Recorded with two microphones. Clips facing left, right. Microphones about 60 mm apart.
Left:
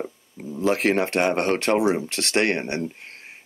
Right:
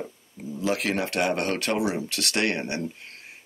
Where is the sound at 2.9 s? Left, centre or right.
Left.